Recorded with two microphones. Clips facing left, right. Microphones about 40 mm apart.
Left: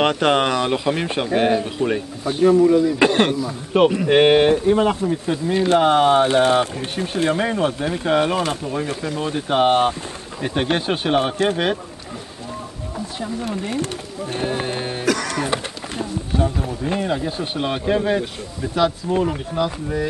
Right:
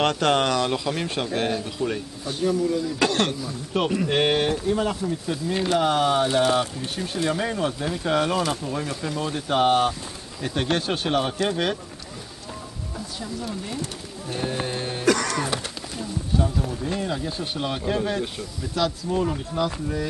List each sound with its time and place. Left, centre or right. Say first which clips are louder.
0.0 s speech: left 4 dB; centre
2.5 s speech: left 10 dB; left
2.8 s speech: left 7 dB; left
13.5 s speech: left 7 dB; left
14.4 s music: left 3 dB; left
16.4 s speech: left 4 dB; left